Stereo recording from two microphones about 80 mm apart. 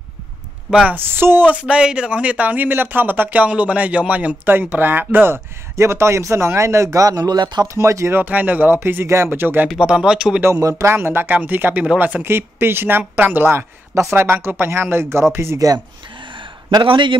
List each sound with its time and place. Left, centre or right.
0.7 s speech: centre
0.9 s speech: right
1.5 s speech: centre; by 7.6 s right
7.6 s speech: right
8.2 s speech: right
9.8 s speech: centre
10.4 s speech: right
10.9 s speech: right
16.3 s a sound: right